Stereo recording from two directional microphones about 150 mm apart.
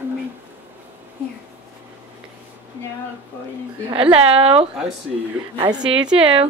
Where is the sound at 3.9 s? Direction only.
40° right (ahead or behind).